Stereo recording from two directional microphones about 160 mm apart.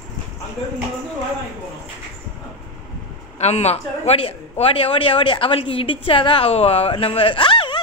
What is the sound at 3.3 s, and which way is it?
A man's voice, 40° left (ahead or behind).